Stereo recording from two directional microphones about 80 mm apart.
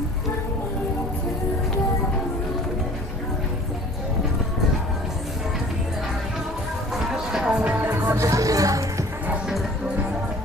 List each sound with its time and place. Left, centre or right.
7.2 s music: centre
7.5 s music: centre
8.2 s music: right